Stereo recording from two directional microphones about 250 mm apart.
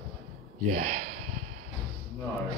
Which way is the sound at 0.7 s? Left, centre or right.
Right.